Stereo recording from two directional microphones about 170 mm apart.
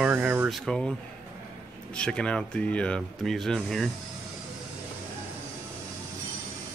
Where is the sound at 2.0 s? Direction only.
5° left (ahead or behind).